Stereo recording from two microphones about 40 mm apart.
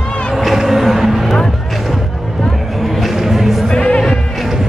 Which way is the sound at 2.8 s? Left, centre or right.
Centre.